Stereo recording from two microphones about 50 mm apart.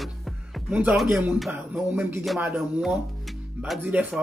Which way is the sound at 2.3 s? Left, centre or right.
Right.